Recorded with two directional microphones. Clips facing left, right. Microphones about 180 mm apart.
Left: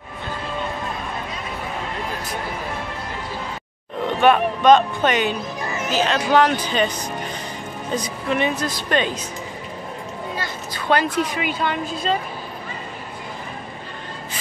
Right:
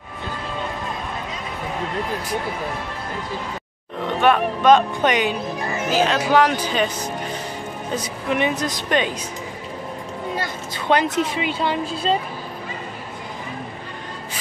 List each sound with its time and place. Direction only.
4.2 s speech: centre (ahead or behind)
4.7 s speech: 15° right (ahead or behind)
7.9 s speech: 10° right (ahead or behind)
10.9 s speech: 20° right (ahead or behind)